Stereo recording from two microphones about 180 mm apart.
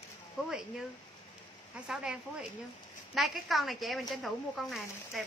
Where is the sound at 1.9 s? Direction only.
5° right (ahead or behind).